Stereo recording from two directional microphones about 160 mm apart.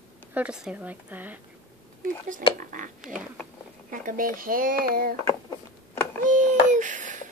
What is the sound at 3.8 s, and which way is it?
Speech, 60° right (ahead or behind).